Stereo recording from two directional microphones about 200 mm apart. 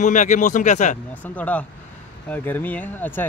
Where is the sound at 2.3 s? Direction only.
10° left (ahead or behind).